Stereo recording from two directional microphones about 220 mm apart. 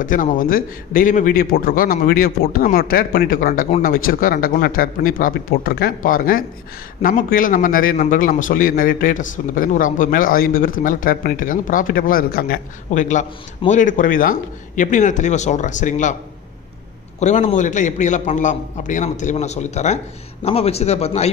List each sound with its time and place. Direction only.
0.0 s a man's voice: 35° left (ahead or behind)
17.2 s a man's voice: 35° left (ahead or behind)